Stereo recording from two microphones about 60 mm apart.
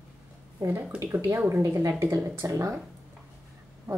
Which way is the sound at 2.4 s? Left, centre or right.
Right.